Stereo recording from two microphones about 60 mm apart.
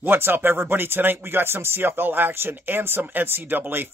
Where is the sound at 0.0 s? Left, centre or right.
Right.